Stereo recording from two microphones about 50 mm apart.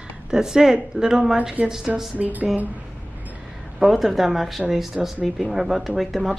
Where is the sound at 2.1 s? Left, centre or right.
Right.